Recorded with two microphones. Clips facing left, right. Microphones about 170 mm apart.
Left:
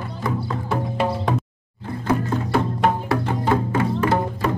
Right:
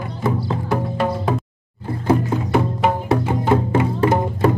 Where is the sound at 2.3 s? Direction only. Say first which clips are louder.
Right 2 dB; 5° right (ahead or behind).